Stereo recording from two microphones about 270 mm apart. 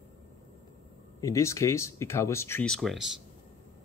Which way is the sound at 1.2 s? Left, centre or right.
Centre.